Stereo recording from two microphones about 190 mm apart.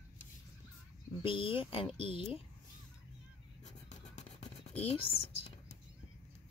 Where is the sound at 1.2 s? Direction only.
25° left (ahead or behind).